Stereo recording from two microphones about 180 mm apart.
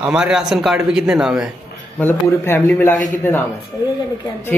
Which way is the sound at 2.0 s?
10° left (ahead or behind).